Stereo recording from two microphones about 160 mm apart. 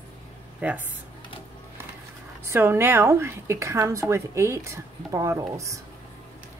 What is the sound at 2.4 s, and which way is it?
A woman's voice, 15° right (ahead or behind).